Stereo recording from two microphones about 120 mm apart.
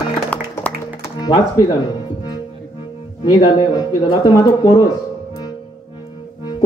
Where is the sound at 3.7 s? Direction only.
35° left (ahead or behind).